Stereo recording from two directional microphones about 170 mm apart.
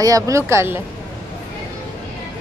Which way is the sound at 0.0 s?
20° right (ahead or behind).